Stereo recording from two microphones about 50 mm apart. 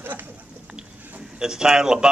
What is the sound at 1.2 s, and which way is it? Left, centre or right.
Speech, centre.